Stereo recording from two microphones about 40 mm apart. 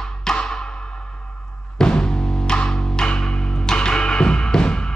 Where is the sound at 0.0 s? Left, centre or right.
Centre.